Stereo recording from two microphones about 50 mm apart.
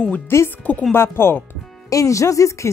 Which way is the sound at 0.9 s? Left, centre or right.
Left.